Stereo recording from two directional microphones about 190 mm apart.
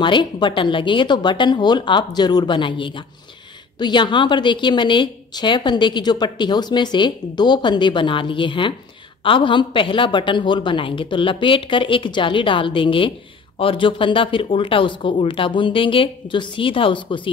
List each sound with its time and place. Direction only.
0.0 s a woman's voice: 25° left (ahead or behind)